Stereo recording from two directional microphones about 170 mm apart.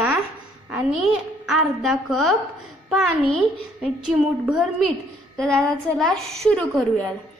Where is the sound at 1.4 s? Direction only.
Centre (ahead or behind).